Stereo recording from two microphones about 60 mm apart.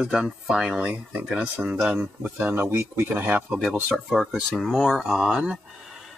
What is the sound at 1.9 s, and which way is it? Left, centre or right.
Speech, right.